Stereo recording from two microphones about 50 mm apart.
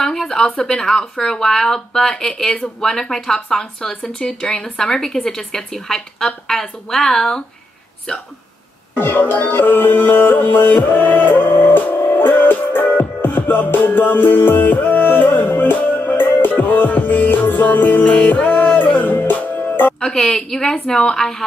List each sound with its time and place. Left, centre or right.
0.0 s a sound: centre
0.6 s a woman's voice: centre
8.9 s music: left
20.0 s a woman's voice: centre